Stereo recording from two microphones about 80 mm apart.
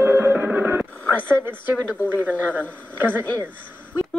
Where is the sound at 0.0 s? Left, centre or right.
Centre.